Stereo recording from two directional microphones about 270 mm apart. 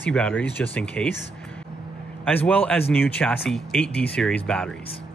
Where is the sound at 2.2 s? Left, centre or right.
Centre.